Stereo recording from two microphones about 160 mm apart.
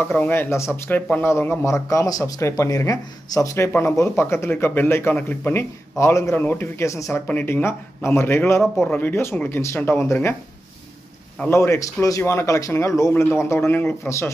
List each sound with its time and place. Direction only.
0.0 s a man's voice: 10° left (ahead or behind)
11.3 s a man's voice: 15° left (ahead or behind)